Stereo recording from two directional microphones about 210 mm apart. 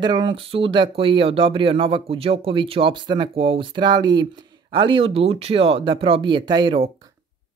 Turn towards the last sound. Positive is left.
turn(degrees=-25)  # may be behind; listen again after turning